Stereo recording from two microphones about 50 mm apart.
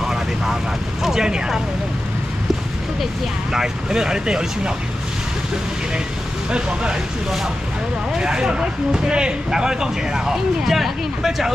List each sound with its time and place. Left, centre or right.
0.0 s vehicle: centre
1.0 s speech: centre
3.5 s speech: centre
6.5 s speech: centre
8.1 s speech: centre